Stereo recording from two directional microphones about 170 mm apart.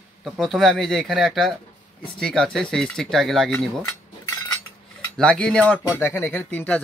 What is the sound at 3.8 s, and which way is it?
Cutlery, 15° left (ahead or behind).